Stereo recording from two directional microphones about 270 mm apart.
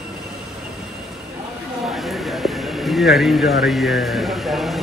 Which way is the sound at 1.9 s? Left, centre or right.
Centre.